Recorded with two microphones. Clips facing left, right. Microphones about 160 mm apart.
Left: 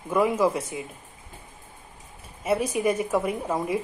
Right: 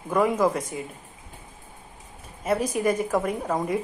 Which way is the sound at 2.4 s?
10° left (ahead or behind).